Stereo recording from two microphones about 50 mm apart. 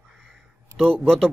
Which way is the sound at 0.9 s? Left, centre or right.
Centre.